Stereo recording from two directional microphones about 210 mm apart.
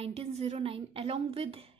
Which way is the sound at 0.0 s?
30° right (ahead or behind).